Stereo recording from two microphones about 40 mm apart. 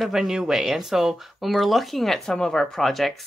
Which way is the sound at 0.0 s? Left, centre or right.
Centre.